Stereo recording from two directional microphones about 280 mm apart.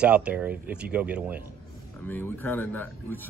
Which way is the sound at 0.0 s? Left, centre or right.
Centre.